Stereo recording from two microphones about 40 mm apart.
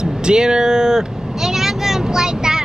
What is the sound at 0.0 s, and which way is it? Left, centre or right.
Vehicle, centre.